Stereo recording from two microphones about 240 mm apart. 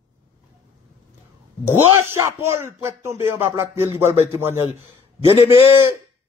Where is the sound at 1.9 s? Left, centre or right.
Centre.